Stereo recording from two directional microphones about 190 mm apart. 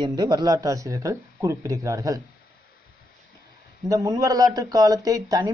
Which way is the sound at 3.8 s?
15° right (ahead or behind).